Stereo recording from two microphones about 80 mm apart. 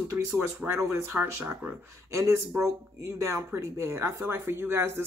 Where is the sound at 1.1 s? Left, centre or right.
Right.